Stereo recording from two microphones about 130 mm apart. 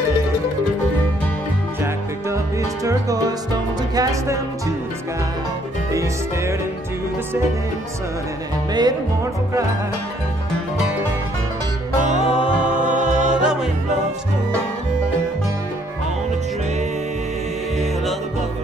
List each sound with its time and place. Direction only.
2.8 s music: 25° right (ahead or behind)
8.7 s music: 30° right (ahead or behind)
12.3 s music: 45° left (ahead or behind)
12.6 s music: 70° right (ahead or behind)
13.3 s music: 5° right (ahead or behind)